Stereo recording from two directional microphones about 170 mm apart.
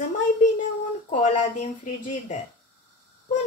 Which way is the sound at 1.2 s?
40° left (ahead or behind).